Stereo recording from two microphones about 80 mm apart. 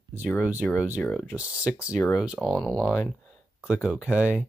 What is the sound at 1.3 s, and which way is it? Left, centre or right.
Speech, centre.